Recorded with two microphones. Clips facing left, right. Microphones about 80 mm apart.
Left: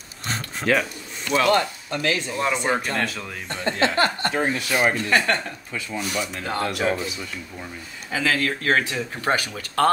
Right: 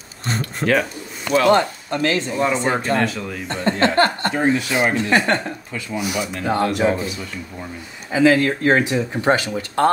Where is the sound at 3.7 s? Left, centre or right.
Right.